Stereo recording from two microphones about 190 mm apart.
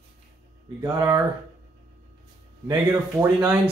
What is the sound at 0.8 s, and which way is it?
Speech, 15° right (ahead or behind).